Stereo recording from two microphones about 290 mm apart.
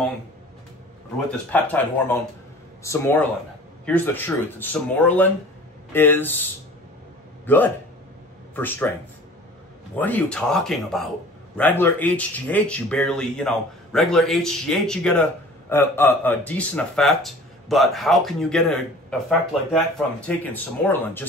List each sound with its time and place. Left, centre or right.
1.5 s speech: centre
7.4 s speech: centre
9.9 s speech: centre